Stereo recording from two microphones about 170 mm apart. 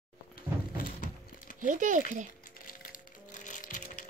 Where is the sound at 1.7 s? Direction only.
45° right (ahead or behind).